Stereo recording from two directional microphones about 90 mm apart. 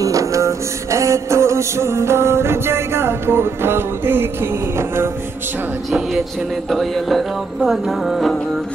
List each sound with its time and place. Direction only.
0.0 s music: 35° right (ahead or behind)
5.9 s music: centre (ahead or behind)